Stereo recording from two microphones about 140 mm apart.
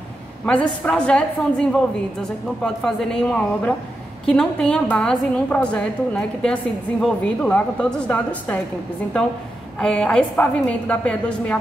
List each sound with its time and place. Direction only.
0.5 s a woman's voice: 5° left (ahead or behind)
9.8 s a woman's voice: 5° left (ahead or behind)